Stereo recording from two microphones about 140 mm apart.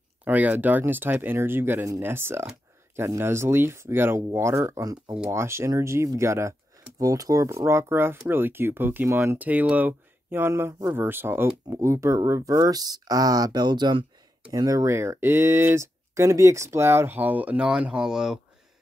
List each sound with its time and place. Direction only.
0.2 s speech: 10° right (ahead or behind)